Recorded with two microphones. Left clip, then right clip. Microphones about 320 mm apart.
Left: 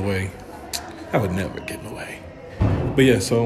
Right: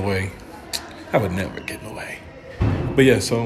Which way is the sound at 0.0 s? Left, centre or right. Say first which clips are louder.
Right 2 dB; centre.